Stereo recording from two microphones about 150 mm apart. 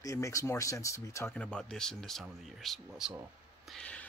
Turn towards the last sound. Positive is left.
turn(degrees=5)  # may be behind; listen again after turning